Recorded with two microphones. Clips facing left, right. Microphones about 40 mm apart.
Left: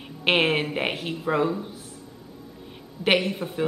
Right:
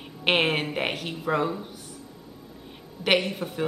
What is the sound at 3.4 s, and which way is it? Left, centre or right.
Speech, left.